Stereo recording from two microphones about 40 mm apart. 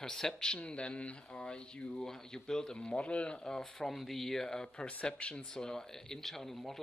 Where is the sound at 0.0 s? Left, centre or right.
Centre.